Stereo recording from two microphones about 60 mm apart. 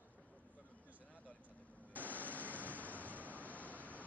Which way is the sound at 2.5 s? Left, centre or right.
Left.